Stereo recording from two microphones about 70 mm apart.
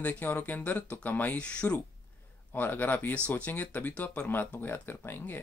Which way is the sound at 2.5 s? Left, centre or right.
Left.